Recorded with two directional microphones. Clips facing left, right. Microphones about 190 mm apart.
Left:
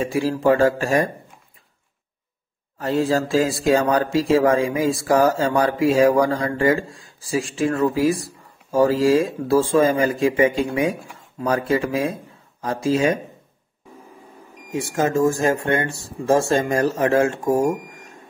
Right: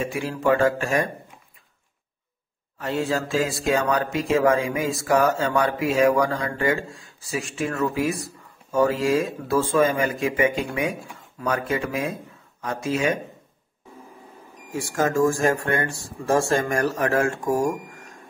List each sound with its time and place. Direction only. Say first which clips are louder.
0.0 s speech: left 5 dB; 35° left (ahead or behind)
2.8 s speech: left 5 dB; 35° left (ahead or behind)
14.7 s speech: left 3 dB; 20° left (ahead or behind)